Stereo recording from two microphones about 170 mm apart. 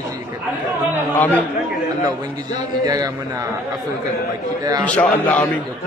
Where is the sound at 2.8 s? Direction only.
20° right (ahead or behind).